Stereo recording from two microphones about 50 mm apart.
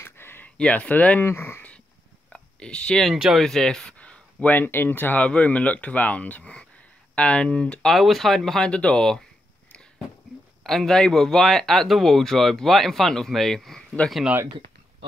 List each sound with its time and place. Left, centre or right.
0.0 s a sound: left
0.7 s speech: left
1.2 s speech: left
2.2 s a sound: centre
3.1 s speech: centre
3.3 s speech: centre
4.4 s speech: left
5.2 s speech: left
7.9 s speech: centre
8.6 s speech: centre
10.6 s speech: centre